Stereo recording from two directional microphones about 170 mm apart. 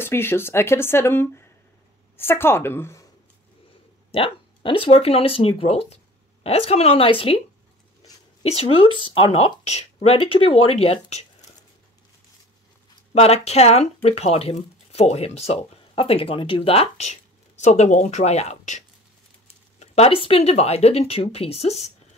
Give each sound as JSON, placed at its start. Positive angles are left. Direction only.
{"t": 0.0, "sound": "speech", "side_deg": 15}
{"t": 4.1, "sound": "speech", "side_deg": 35}
{"t": 13.1, "sound": "speech", "side_deg": 35}